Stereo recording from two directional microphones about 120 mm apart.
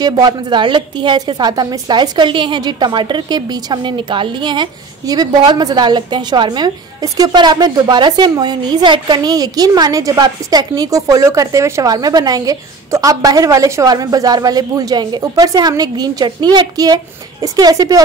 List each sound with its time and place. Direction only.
0.0 s a woman's voice: 35° right (ahead or behind)